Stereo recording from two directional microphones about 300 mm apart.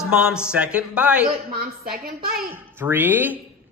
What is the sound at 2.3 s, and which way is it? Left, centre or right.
A child's voice, centre.